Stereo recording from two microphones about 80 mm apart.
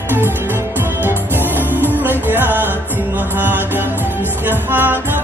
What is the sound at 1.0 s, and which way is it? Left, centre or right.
Music, right.